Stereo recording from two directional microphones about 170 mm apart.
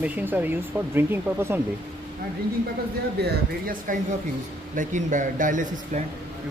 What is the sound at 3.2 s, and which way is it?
Speech, 65° right (ahead or behind).